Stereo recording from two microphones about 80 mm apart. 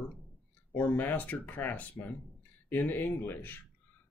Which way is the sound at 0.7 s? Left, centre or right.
Left.